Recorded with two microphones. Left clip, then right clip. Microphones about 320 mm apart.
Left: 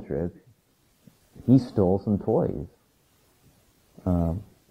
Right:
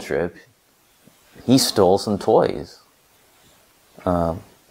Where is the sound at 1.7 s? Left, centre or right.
Centre.